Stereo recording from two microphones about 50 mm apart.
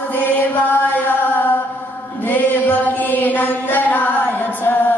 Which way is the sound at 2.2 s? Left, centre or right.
Left.